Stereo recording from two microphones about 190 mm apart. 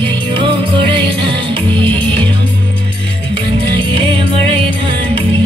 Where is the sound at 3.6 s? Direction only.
25° right (ahead or behind).